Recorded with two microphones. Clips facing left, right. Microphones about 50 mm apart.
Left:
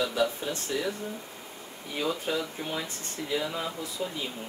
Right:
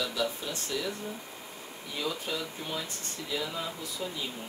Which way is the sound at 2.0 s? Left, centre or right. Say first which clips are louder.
Left 4 dB; left.